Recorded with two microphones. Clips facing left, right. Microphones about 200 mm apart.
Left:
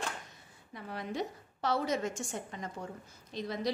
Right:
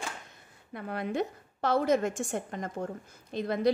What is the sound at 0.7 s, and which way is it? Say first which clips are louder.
A woman's voice: right 6 dB; 55° right (ahead or behind).